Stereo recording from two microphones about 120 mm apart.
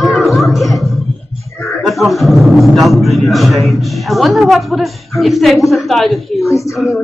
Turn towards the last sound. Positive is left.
turn(degrees=25)  # may be behind; listen again after turning